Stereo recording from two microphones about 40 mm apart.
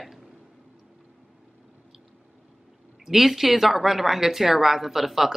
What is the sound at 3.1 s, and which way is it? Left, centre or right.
Speech, centre.